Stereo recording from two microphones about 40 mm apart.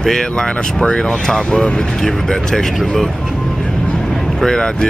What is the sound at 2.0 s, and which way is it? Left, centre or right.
Speech, centre.